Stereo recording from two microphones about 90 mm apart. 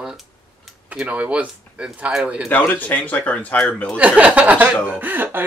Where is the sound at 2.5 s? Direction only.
20° left (ahead or behind).